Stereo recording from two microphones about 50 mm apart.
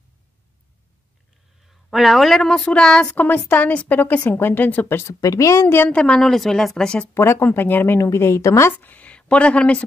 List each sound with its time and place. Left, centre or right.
1.7 s a woman's voice: centre
3.2 s a woman's voice: left
4.3 s a woman's voice: left
4.8 s speech: left
5.4 s a woman's voice: left
5.9 s a woman's voice: left
7.2 s speech: left
7.4 s speech: left
8.0 s a woman's voice: left
8.7 s speech: left